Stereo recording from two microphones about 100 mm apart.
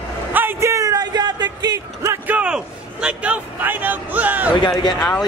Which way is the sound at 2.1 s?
15° right (ahead or behind).